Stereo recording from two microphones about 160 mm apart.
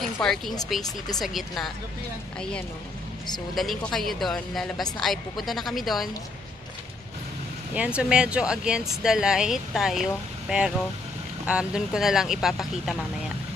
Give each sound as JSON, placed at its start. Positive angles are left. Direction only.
{"t": 0.0, "sound": "speech", "side_deg": 0}
{"t": 0.8, "sound": "speech", "side_deg": 25}
{"t": 1.2, "sound": "speech", "side_deg": 0}
{"t": 3.5, "sound": "speech", "side_deg": 0}
{"t": 7.7, "sound": "speech", "side_deg": -5}